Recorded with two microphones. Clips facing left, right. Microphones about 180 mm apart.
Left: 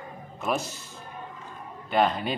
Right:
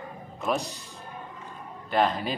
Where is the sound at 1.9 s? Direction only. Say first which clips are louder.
Left 1 dB; centre (ahead or behind).